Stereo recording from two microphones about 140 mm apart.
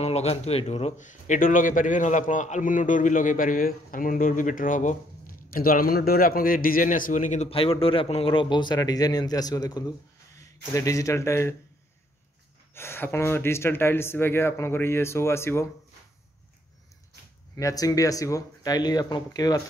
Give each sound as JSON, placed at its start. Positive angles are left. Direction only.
{"t": 0.0, "sound": "a man's voice", "side_deg": 50}
{"t": 7.4, "sound": "a man's voice", "side_deg": 40}
{"t": 12.7, "sound": "speech", "side_deg": 15}
{"t": 17.6, "sound": "speech", "side_deg": 25}